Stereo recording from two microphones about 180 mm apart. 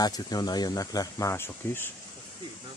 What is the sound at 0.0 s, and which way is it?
Speech, 20° left (ahead or behind).